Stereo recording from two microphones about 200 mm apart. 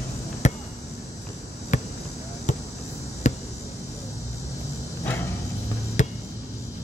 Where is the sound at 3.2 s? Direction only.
35° left (ahead or behind).